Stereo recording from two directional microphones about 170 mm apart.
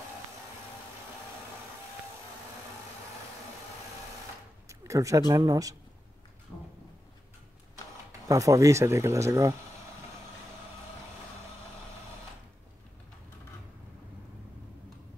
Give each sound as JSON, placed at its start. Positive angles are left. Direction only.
{"t": 4.6, "sound": "a sound", "side_deg": -20}
{"t": 5.3, "sound": "speech", "side_deg": -20}
{"t": 8.3, "sound": "speech", "side_deg": -20}